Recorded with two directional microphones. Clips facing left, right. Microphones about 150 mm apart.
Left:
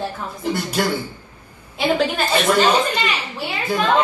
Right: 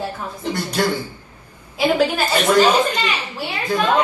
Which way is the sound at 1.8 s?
10° right (ahead or behind).